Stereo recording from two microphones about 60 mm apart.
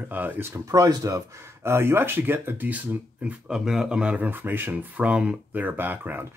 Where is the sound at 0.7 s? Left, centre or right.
Right.